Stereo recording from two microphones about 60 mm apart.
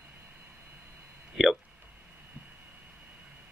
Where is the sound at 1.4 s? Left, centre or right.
Centre.